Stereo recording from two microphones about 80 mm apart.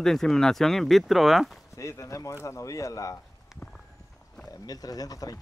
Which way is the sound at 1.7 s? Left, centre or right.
Left.